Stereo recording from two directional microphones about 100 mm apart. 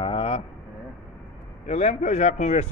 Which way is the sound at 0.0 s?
65° left (ahead or behind).